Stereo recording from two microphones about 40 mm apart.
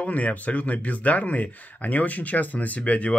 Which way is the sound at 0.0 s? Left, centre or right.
Left.